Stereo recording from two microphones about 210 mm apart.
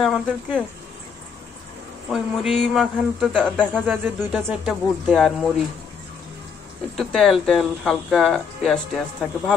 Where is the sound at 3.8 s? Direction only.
10° right (ahead or behind).